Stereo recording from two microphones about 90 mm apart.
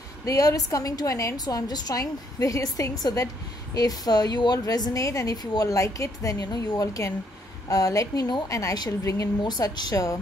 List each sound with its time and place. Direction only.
0.2 s a woman's voice: 40° left (ahead or behind)
1.4 s a woman's voice: 50° left (ahead or behind)